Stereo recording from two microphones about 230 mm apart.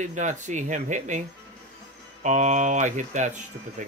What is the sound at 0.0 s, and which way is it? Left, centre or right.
Speech, right.